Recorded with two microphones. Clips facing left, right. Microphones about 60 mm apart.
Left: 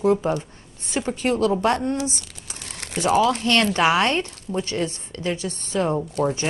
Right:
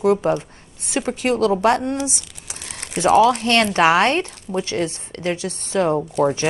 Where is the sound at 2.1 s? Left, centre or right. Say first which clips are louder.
Right 1 dB; right.